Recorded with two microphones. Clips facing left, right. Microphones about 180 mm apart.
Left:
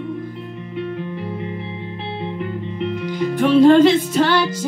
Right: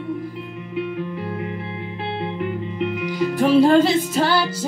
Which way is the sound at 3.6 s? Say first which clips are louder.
Left 4 dB; 35° right (ahead or behind).